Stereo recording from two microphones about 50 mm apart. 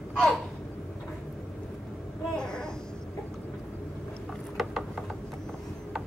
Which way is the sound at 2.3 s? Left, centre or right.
Centre.